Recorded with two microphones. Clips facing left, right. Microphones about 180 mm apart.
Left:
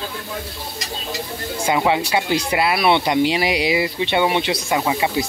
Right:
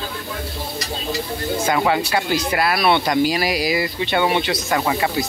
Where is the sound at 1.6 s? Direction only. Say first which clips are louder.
Left 2 dB; 15° left (ahead or behind).